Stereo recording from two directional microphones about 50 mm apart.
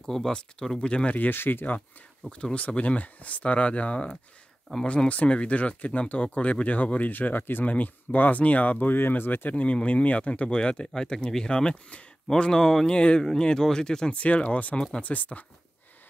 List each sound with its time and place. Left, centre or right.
0.0 s speech: centre
0.3 s speech: centre
1.1 s speech: left
1.4 s speech: left
2.5 s speech: left
9.5 s speech: left
12.3 s speech: centre
14.1 s speech: left